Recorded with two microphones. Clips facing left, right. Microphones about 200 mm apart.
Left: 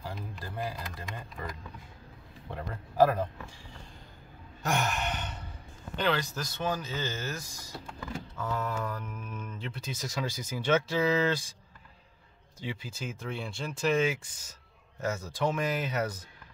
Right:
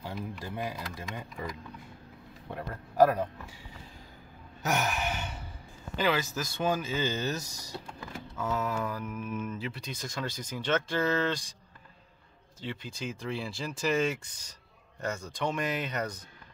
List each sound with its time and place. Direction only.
0.1 s speech: 15° right (ahead or behind)
2.5 s speech: 5° right (ahead or behind)
4.6 s sigh: 5° right (ahead or behind)
5.9 s speech: 5° right (ahead or behind)
7.4 s speech: 70° right (ahead or behind)
8.4 s speech: 5° right (ahead or behind)
12.5 s speech: 5° left (ahead or behind)